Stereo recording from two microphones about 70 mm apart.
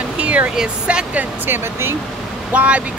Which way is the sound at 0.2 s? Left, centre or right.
Right.